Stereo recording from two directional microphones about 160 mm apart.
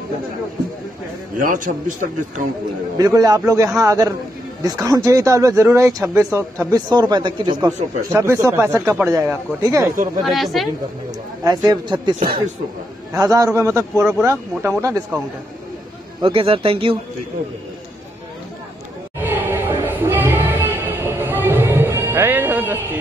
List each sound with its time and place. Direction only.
1.4 s a man's voice: 55° right (ahead or behind)
3.0 s speech: 20° right (ahead or behind)
6.9 s speech: 30° right (ahead or behind)
8.1 s speech: 15° right (ahead or behind)
10.2 s speech: centre (ahead or behind)
11.4 s speech: 25° right (ahead or behind)
16.2 s speech: 35° right (ahead or behind)
19.2 s music: 10° right (ahead or behind)